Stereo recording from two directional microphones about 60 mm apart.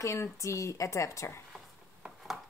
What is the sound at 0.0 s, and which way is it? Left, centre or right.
A woman's voice, left.